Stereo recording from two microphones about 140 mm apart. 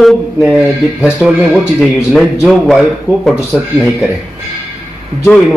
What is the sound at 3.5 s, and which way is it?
Speech, 10° right (ahead or behind).